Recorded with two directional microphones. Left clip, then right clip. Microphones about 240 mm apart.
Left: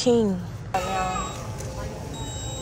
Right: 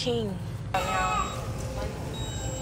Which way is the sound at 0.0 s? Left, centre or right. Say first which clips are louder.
Left 8 dB; left.